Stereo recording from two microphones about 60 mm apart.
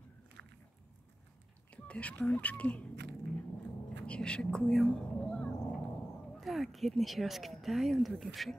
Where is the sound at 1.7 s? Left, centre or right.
Left.